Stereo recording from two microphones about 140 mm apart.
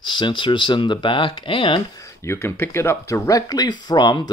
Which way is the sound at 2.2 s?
15° left (ahead or behind).